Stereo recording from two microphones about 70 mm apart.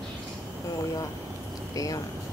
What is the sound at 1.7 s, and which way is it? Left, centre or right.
Speech, left.